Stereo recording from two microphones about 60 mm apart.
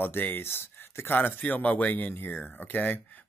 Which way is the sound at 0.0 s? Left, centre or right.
Left.